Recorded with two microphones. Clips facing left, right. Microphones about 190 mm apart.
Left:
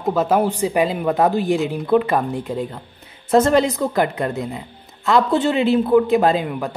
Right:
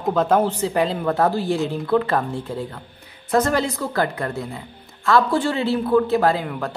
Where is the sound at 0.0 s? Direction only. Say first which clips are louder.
Left 1 dB; 10° left (ahead or behind).